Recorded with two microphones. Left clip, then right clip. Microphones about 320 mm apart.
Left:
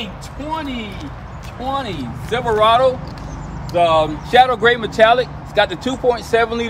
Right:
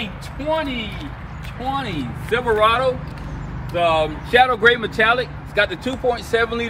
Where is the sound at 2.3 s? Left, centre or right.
Left.